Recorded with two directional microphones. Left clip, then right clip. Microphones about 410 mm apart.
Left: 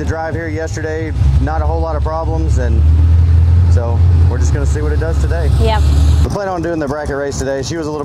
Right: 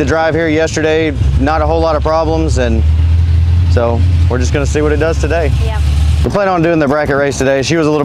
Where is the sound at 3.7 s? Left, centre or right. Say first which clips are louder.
Right 9 dB; right.